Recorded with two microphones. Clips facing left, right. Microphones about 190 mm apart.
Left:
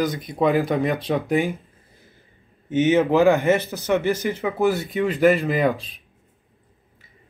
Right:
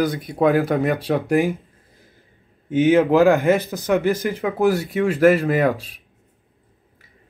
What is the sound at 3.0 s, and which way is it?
A man's voice, centre (ahead or behind).